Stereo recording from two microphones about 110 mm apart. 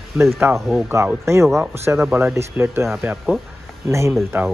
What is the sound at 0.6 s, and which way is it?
Speech, centre (ahead or behind).